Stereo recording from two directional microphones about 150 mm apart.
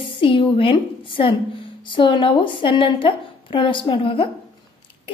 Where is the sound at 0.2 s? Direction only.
35° left (ahead or behind).